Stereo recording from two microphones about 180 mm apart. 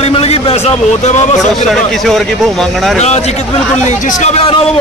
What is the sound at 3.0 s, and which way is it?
A man's voice, 35° left (ahead or behind).